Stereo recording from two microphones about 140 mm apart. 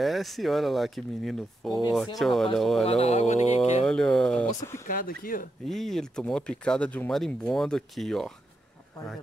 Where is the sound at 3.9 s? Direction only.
5° left (ahead or behind).